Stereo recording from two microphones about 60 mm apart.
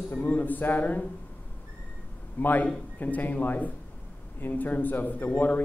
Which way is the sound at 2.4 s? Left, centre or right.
Left.